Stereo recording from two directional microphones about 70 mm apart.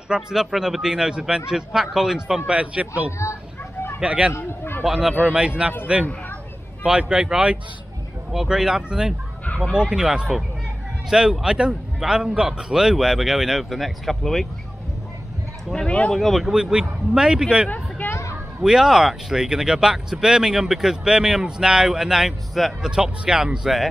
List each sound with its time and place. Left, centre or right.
0.1 s speech: centre
4.3 s a man's voice: left
4.8 s speech: centre
15.7 s speech: centre
16.2 s speech: centre
17.6 s hubbub: left
18.6 s speech: centre